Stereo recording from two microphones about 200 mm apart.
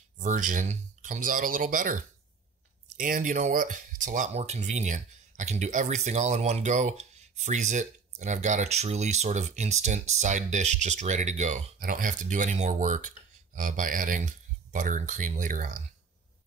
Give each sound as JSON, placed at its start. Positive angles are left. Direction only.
{"t": 0.2, "sound": "speech", "side_deg": -40}
{"t": 3.0, "sound": "speech", "side_deg": -40}